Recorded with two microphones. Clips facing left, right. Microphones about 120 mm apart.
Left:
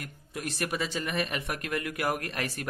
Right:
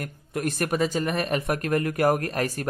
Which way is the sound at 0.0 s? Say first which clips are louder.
Right 9 dB; 50° right (ahead or behind).